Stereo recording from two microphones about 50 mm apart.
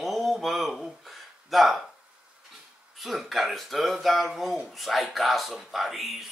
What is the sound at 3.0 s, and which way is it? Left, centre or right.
Speech, centre.